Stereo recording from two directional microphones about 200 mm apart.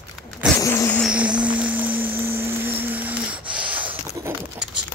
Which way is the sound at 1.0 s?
5° right (ahead or behind).